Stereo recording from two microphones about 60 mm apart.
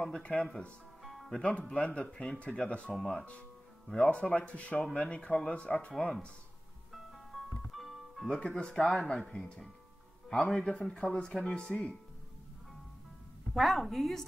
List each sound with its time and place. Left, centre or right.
0.2 s speech: left
1.0 s music: centre
1.4 s speech: left
7.7 s music: centre
8.3 s speech: centre
8.8 s a woman's voice: centre
9.2 s speech: centre
10.3 s a woman's voice: centre
13.6 s a woman's voice: centre